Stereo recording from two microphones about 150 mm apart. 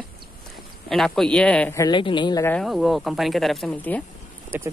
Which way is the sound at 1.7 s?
25° left (ahead or behind).